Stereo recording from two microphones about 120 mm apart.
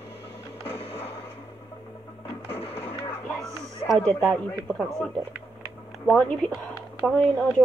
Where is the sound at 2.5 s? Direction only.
55° left (ahead or behind).